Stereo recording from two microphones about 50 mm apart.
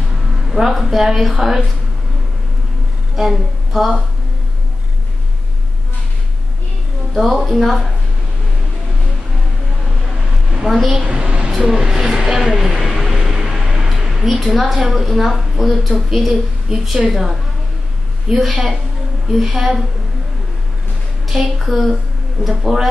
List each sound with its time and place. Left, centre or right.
0.5 s a woman's voice: centre
3.2 s speech: centre
7.2 s a woman's voice: centre
10.0 s a sound: centre
11.0 s a woman's voice: centre
21.3 s speech: centre